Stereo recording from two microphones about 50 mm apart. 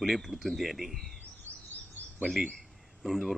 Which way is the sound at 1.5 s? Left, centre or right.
Right.